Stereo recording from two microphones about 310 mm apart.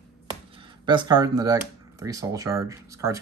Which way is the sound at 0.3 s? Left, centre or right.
Centre.